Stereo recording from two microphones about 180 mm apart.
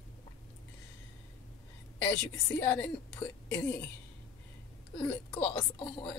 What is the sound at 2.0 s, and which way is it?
A woman's voice, 10° left (ahead or behind).